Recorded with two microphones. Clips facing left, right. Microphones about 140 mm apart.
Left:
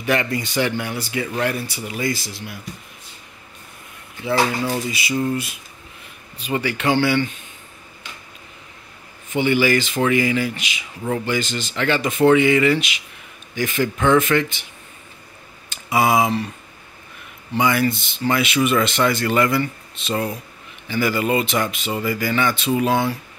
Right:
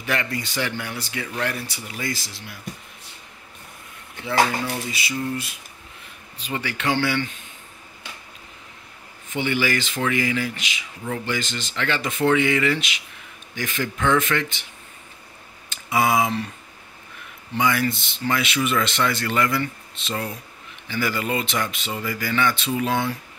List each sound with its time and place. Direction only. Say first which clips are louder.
0.0 s speech: left 5 dB; 20° left (ahead or behind)
4.3 s speech: left 2 dB; 15° left (ahead or behind)
9.3 s speech: left 6 dB; 15° left (ahead or behind)
15.7 s speech: left 3 dB; 15° left (ahead or behind)
17.6 s speech: left 3 dB; 15° left (ahead or behind)
20.9 s speech: left 5 dB; 15° left (ahead or behind)